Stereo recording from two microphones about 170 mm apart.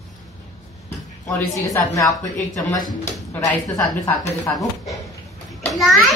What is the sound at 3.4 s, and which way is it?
Speech, centre (ahead or behind).